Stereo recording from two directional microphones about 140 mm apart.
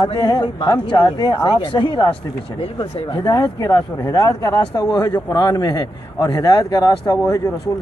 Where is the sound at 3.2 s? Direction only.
25° left (ahead or behind).